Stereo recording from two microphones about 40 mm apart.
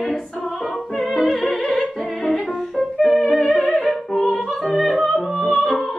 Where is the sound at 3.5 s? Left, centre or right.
Right.